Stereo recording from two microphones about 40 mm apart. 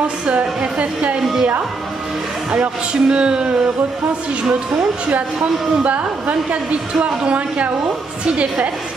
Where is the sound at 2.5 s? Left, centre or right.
Right.